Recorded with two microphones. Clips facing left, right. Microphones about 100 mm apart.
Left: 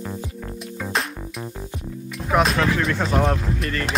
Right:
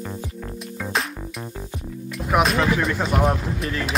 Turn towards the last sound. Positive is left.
turn(degrees=-5)  # may be behind; listen again after turning